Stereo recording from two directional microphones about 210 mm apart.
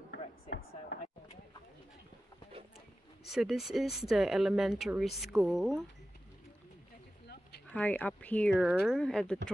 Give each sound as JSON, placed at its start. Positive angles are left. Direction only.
{"t": 0.1, "sound": "a sound", "side_deg": 55}
{"t": 3.3, "sound": "speech", "side_deg": 0}
{"t": 7.7, "sound": "speech", "side_deg": 5}